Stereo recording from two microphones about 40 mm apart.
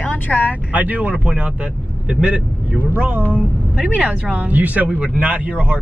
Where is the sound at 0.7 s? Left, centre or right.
Right.